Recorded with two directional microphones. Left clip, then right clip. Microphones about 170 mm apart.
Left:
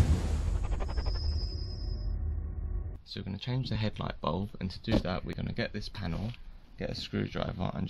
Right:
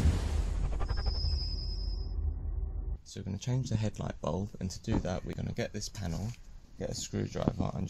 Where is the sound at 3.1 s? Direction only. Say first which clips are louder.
Left 1 dB; 10° right (ahead or behind).